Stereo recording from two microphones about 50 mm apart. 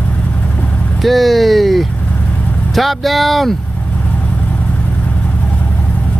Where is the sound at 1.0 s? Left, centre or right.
Centre.